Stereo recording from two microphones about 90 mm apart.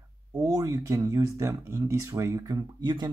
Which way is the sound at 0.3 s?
40° right (ahead or behind).